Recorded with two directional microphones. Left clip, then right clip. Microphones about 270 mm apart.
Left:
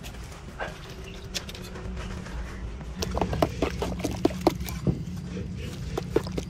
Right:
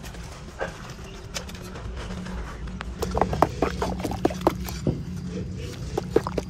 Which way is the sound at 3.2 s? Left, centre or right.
Centre.